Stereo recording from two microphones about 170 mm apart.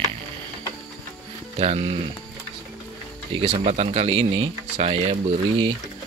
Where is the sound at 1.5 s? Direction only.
35° right (ahead or behind).